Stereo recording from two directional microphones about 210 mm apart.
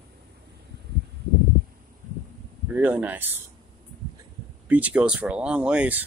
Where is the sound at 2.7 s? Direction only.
10° right (ahead or behind).